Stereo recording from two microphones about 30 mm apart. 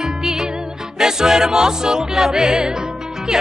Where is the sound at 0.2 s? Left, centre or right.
Centre.